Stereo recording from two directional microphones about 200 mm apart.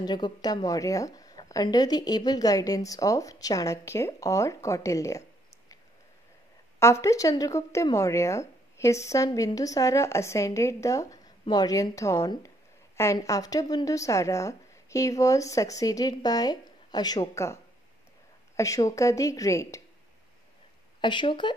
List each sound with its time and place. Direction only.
0.0 s a woman's voice: 20° left (ahead or behind)
6.8 s a woman's voice: 15° left (ahead or behind)
18.6 s a woman's voice: 15° left (ahead or behind)
21.0 s speech: 25° left (ahead or behind)